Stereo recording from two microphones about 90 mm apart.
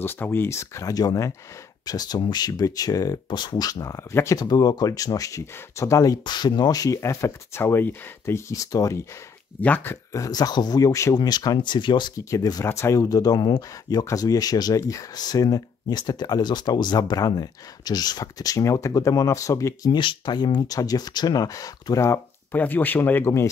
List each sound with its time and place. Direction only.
0.0 s speech: 25° left (ahead or behind); by 3.2 s 40° left (ahead or behind)
3.3 s speech: 55° left (ahead or behind); by 4.4 s 35° left (ahead or behind)
4.4 s speech: 45° left (ahead or behind)
6.2 s speech: 55° left (ahead or behind); by 9.0 s 40° left (ahead or behind)
9.6 s speech: 15° left (ahead or behind)
10.1 s speech: 45° left (ahead or behind)
11.1 s speech: 50° left (ahead or behind)
12.3 s speech: 45° left (ahead or behind)
12.6 s speech: 30° left (ahead or behind)
19.9 s speech: 60° left (ahead or behind); by 22.2 s 35° left (ahead or behind)
22.5 s speech: 20° left (ahead or behind)